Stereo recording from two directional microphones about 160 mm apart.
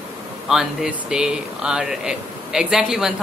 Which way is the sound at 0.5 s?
5° right (ahead or behind).